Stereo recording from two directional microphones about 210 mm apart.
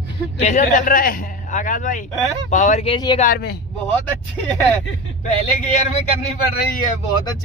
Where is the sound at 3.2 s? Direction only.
45° left (ahead or behind).